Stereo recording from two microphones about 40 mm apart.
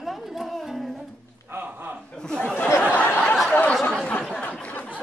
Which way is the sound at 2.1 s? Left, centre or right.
Centre.